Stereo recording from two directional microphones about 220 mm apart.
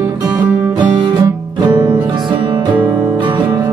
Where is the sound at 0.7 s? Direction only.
20° right (ahead or behind).